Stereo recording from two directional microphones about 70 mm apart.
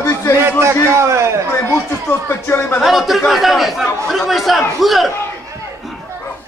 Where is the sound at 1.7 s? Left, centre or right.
Left.